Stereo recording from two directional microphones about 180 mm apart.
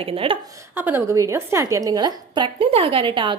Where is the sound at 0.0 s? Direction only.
30° right (ahead or behind).